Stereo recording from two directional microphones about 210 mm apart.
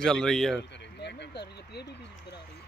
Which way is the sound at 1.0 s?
55° left (ahead or behind).